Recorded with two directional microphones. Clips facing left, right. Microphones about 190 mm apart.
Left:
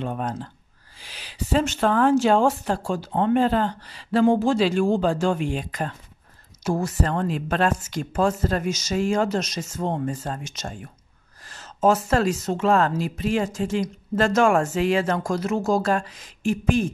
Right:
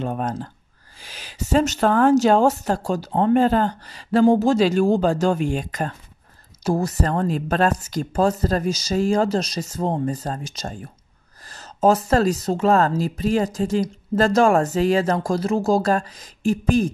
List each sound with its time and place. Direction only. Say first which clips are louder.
0.0 s speech: right 3 dB; 45° right (ahead or behind)